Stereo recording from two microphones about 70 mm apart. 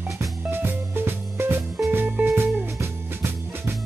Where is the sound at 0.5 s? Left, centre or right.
Right.